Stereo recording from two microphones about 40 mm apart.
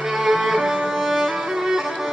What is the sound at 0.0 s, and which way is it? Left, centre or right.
Music, centre.